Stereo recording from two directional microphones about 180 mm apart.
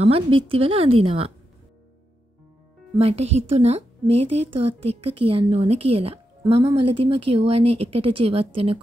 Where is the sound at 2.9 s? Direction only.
35° right (ahead or behind).